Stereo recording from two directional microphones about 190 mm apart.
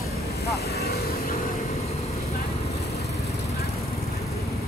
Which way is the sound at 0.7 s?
55° left (ahead or behind).